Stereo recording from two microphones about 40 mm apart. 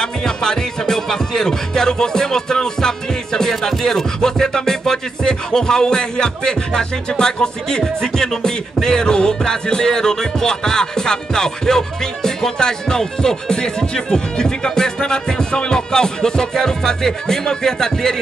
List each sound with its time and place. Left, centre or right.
0.0 s music: centre